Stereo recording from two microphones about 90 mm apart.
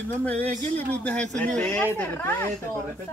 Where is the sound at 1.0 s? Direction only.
10° left (ahead or behind).